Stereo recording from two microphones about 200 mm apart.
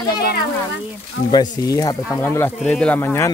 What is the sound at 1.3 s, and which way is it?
Speech, 20° left (ahead or behind).